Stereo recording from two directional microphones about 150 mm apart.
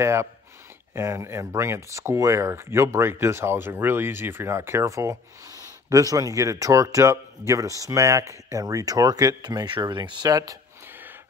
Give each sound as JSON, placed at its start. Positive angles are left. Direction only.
{"t": 0.0, "sound": "speech", "side_deg": -20}